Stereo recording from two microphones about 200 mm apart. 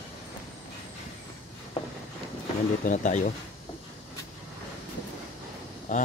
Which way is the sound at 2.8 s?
40° left (ahead or behind).